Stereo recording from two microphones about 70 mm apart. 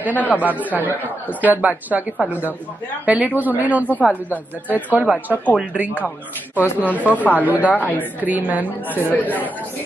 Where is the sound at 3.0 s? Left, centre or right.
Right.